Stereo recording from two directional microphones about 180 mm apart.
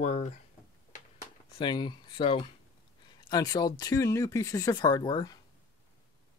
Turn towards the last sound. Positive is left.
turn(degrees=25)  # may be behind; listen again after turning